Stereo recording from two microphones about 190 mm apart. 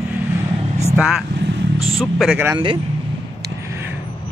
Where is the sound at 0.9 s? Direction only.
5° right (ahead or behind).